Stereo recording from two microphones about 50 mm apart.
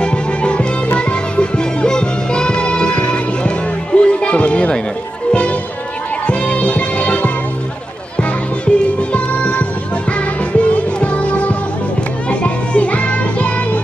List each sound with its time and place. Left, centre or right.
0.0 s music: left